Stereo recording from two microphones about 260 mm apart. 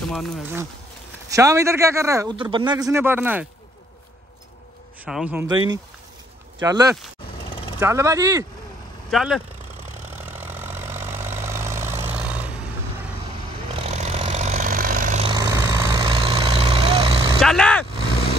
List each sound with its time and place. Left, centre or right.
0.1 s speech: centre
1.3 s a man's voice: centre
5.0 s speech: centre
6.6 s a man's voice: centre
9.1 s speech: centre
10.1 s vehicle: centre
13.7 s vehicle: right
17.4 s vehicle: centre